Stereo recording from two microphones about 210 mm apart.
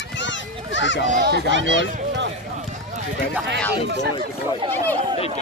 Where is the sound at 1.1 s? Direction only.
45° right (ahead or behind).